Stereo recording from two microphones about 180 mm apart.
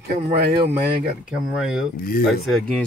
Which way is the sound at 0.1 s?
60° right (ahead or behind).